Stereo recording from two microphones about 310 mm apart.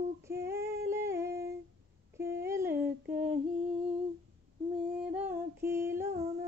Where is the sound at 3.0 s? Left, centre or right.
Right.